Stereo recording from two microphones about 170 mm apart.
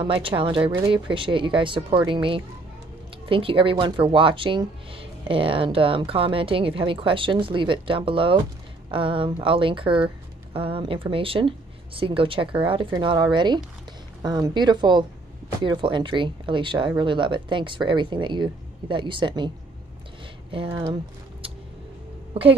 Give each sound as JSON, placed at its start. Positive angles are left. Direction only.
{"t": 0.0, "sound": "speech", "side_deg": -30}
{"t": 20.5, "sound": "speech", "side_deg": -30}
{"t": 22.3, "sound": "a woman's voice", "side_deg": -30}